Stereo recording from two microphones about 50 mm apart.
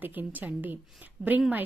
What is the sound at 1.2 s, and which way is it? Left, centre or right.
Speech, right.